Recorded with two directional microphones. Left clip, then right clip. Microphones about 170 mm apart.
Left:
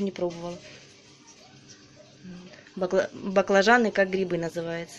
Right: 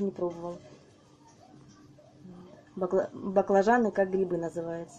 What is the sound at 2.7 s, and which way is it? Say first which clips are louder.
Speech: left 3 dB; 20° left (ahead or behind).